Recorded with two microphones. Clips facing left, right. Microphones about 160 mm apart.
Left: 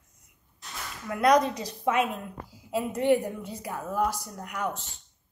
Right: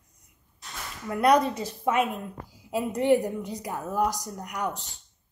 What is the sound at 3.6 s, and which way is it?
A woman's voice, 15° right (ahead or behind).